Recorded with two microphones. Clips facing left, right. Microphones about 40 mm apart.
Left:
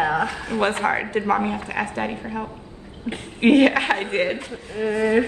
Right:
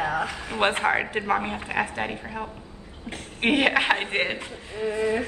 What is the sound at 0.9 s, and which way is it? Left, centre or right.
A man's voice, centre.